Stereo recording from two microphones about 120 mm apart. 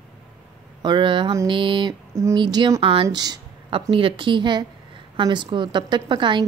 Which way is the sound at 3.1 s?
35° right (ahead or behind).